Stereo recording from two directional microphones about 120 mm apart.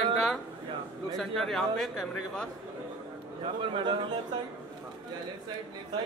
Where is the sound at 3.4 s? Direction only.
45° right (ahead or behind).